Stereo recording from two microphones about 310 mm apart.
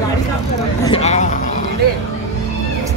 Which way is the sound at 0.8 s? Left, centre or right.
Centre.